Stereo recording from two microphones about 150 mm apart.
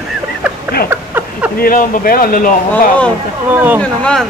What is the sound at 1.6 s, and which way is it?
Speech, 75° left (ahead or behind).